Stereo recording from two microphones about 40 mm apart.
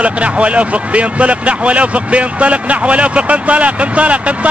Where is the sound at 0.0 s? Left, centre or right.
Right.